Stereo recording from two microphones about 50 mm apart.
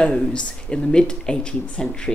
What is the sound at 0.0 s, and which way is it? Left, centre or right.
Speech, centre.